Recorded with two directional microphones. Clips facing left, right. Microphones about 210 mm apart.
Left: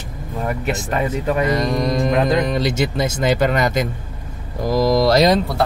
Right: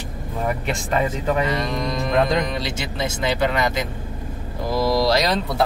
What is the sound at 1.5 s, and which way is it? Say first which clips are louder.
Speech: left 5 dB; 40° left (ahead or behind).